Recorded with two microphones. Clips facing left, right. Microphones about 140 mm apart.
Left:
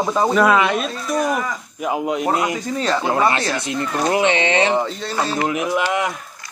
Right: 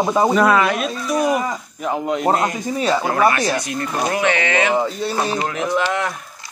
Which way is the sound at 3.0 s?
25° left (ahead or behind).